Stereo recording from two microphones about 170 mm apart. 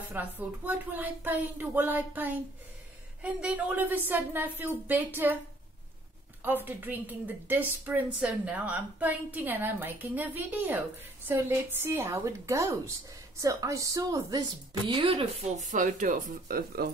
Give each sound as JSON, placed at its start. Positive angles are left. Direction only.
{"t": 0.1, "sound": "a woman's voice", "side_deg": -10}
{"t": 6.4, "sound": "a woman's voice", "side_deg": -10}
{"t": 15.6, "sound": "speech", "side_deg": -50}